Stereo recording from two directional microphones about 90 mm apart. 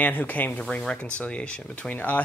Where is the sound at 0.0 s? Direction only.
20° left (ahead or behind).